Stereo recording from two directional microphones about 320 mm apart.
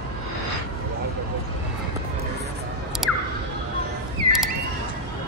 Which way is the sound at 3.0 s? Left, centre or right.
Centre.